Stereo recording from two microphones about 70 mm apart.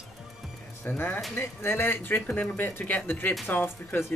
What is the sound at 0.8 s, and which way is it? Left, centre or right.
Speech, left.